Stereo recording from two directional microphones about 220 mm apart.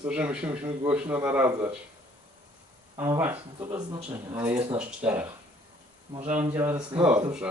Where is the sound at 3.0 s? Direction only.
10° right (ahead or behind).